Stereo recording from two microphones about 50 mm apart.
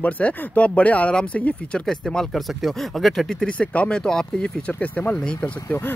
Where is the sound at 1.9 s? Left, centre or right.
Centre.